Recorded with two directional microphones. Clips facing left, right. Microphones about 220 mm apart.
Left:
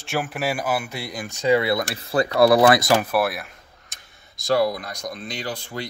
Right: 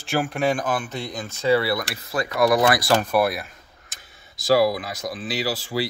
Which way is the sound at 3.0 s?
Centre (ahead or behind).